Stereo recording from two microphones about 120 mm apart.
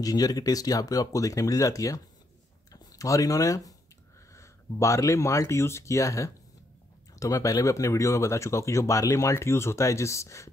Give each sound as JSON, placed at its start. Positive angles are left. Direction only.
{"t": 0.0, "sound": "speech", "side_deg": 30}